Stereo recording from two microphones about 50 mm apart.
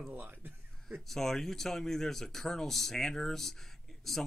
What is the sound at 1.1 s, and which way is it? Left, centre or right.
Speech, centre.